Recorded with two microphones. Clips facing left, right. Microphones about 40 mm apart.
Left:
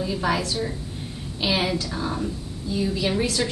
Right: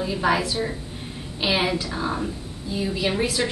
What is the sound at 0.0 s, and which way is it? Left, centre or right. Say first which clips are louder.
A woman's voice: right 2 dB; centre.